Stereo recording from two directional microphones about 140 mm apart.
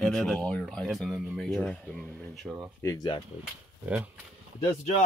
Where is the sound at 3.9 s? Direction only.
10° right (ahead or behind).